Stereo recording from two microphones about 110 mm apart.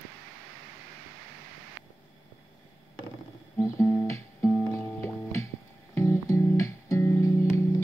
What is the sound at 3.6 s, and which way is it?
Guitar, 25° left (ahead or behind).